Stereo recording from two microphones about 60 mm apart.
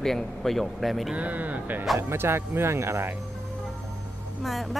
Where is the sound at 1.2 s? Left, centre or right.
Right.